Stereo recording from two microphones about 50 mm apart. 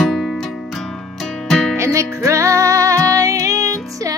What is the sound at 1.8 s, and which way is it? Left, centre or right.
Music, right.